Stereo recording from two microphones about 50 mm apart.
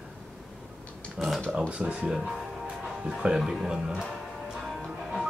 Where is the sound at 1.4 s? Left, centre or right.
Right.